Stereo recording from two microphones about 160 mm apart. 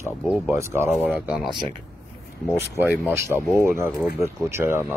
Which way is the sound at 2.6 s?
10° right (ahead or behind).